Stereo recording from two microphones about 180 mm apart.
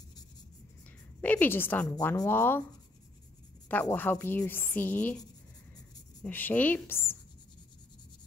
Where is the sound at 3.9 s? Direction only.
10° left (ahead or behind).